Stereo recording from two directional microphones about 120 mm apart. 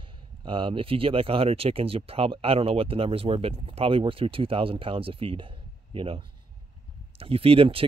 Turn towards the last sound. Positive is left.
turn(degrees=-50)  # may be behind; listen again after turning